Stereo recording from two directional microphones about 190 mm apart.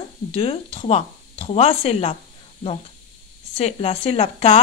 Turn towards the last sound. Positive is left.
turn(degrees=30)  # may be behind; listen again after turning